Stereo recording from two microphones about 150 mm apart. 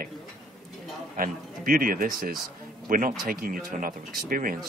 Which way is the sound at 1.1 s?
70° right (ahead or behind).